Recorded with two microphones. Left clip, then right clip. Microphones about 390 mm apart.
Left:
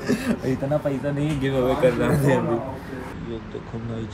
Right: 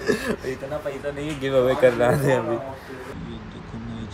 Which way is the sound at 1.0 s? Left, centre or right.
Centre.